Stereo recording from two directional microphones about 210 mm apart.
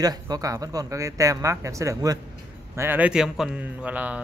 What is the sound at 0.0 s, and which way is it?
A man's voice, 20° right (ahead or behind).